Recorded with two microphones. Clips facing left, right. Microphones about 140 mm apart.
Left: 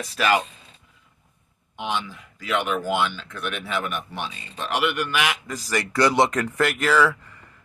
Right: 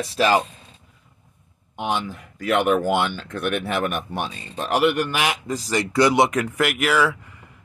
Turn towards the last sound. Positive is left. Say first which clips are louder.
# even
turn(degrees=-10)  # may be behind; listen again after turning